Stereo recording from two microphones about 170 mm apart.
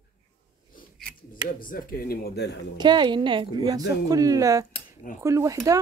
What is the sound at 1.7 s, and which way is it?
Speech, 55° left (ahead or behind).